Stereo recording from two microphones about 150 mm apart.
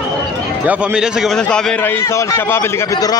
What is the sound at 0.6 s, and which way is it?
A man's voice, 5° right (ahead or behind).